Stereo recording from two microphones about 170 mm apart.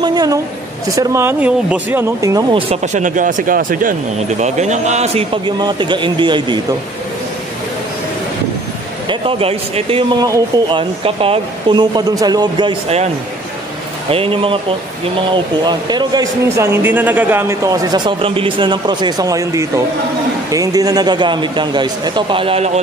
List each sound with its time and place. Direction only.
0.0 s speech: 25° right (ahead or behind)
2.5 s speech: 40° right (ahead or behind)
4.4 s speech: 45° right (ahead or behind)
5.6 s speech: 25° right (ahead or behind)
9.1 s speech: 35° right (ahead or behind)
14.1 s speech: 35° right (ahead or behind)